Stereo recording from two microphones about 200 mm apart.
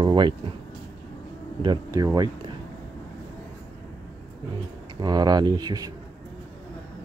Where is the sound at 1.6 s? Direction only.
20° right (ahead or behind).